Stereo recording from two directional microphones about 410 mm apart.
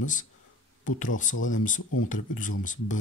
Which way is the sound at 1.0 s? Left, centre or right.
Centre.